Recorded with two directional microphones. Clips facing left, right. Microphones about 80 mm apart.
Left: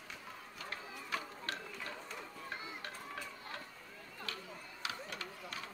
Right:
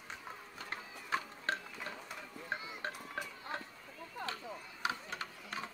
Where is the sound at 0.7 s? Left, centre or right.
Right.